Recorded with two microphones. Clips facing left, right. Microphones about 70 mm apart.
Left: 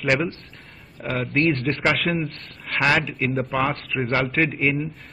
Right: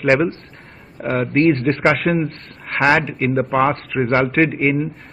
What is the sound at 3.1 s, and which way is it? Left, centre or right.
Speech, right.